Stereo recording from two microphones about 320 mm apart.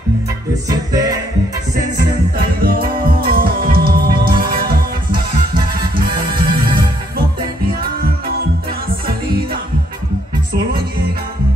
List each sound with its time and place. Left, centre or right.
0.7 s music: centre
2.0 s music: right